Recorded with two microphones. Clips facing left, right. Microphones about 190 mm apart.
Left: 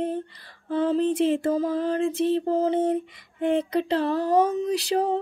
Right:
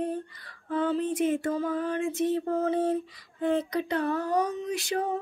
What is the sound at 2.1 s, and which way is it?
Female singing, 30° left (ahead or behind).